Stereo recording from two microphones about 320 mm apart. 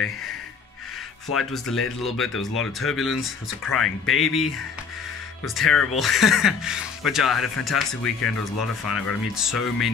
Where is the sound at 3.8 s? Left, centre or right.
Left.